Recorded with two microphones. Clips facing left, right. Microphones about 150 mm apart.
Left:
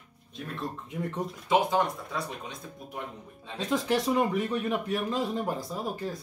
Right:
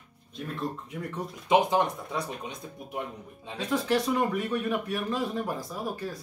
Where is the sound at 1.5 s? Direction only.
20° right (ahead or behind).